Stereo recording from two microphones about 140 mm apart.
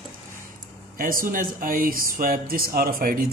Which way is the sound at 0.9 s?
80° right.